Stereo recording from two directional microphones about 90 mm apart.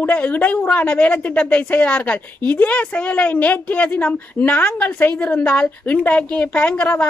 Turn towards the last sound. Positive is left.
turn(degrees=15)  # may be behind; listen again after turning